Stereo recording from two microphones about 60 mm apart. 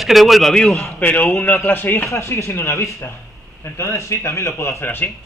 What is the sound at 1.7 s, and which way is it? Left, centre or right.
Speech, left.